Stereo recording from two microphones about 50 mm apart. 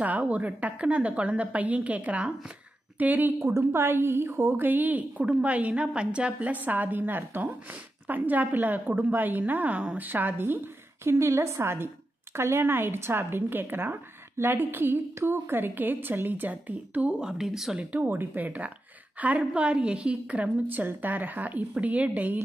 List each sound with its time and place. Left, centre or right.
0.0 s a woman's voice: right
3.0 s a woman's voice: right
3.3 s a woman's voice: right
4.6 s a woman's voice: right
10.0 s a woman's voice: right
11.1 s a woman's voice: right
17.2 s speech: centre
18.0 s a woman's voice: right